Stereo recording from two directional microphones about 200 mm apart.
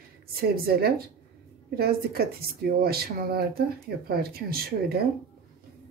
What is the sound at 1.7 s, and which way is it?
Speech, 50° right (ahead or behind).